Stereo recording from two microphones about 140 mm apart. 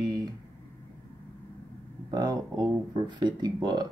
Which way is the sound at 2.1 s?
30° right (ahead or behind).